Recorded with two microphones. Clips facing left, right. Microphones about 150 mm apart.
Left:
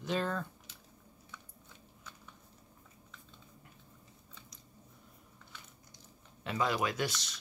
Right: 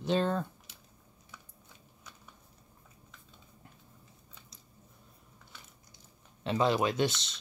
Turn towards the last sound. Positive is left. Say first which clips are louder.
# right 6 dB
turn(degrees=-25)  # may be behind; listen again after turning